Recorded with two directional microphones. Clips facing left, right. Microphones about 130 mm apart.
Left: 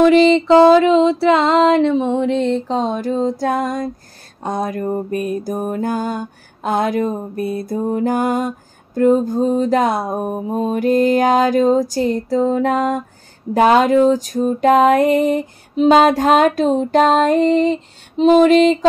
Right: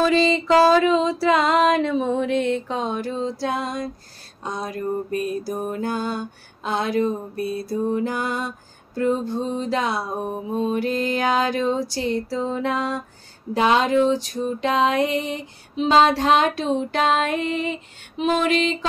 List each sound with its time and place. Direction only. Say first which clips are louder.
0.0 s music: left 8 dB; 20° left (ahead or behind); by 3.9 s 50° left (ahead or behind)
4.4 s lullaby: left 7 dB; 55° left (ahead or behind); by 18.9 s 40° left (ahead or behind)